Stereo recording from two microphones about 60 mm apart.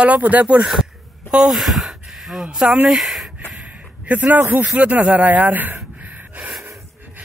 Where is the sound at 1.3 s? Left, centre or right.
Centre.